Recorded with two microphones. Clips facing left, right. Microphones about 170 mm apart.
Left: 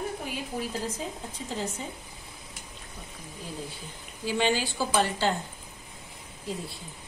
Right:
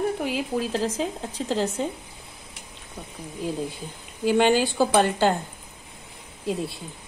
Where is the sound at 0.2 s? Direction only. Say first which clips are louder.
Right 8 dB; 90° right.